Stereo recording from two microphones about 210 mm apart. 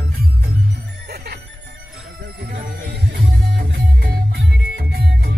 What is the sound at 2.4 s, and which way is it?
Music, 50° right (ahead or behind).